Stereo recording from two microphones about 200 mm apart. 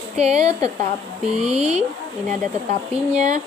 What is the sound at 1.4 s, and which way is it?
Speech, 5° right (ahead or behind).